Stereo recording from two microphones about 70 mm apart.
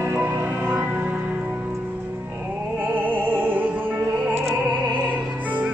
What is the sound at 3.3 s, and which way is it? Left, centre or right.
Music, right.